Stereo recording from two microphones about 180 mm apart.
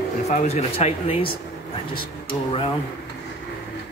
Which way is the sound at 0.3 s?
40° left (ahead or behind).